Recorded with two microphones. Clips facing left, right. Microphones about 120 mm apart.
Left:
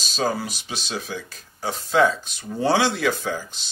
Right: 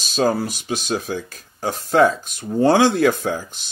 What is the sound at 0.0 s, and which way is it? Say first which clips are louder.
Speech: right 5 dB; 50° right (ahead or behind).